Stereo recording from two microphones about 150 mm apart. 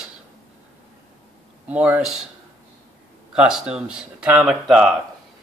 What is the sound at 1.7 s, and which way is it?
Speech, 10° right (ahead or behind).